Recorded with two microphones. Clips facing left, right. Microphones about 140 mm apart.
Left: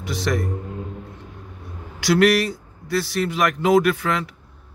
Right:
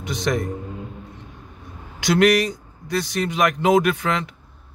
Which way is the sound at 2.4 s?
5° left (ahead or behind).